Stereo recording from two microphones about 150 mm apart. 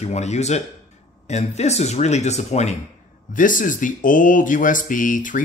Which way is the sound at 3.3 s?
60° left (ahead or behind).